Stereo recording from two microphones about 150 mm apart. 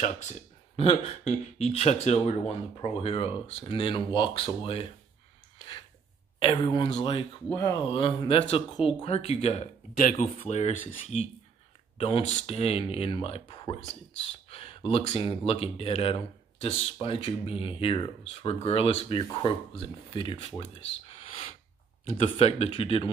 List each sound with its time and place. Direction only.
0.0 s speech: 50° left (ahead or behind)
6.4 s speech: 35° left (ahead or behind)
9.9 s speech: 60° left (ahead or behind)
10.4 s speech: 45° left (ahead or behind)
12.3 s speech: 45° left (ahead or behind)
20.7 s a sound: 40° left (ahead or behind)
22.1 s speech: 40° left (ahead or behind)